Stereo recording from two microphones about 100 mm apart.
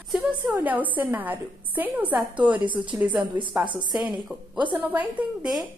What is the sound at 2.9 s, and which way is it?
A woman's voice, 15° right (ahead or behind).